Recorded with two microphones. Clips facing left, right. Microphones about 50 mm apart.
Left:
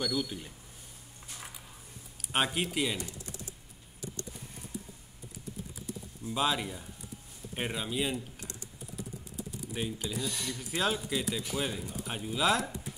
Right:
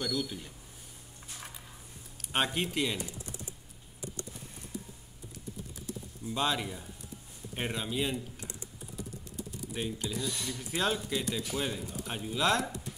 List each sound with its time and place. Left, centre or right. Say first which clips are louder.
0.0 s speech: left 1 dB; centre
2.3 s speech: even; centre
6.2 s speech: left 1 dB; centre
8.4 s typing: right 1 dB; right
9.4 s speech: even; centre